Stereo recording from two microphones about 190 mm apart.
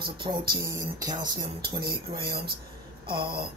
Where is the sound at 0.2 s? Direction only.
25° right (ahead or behind).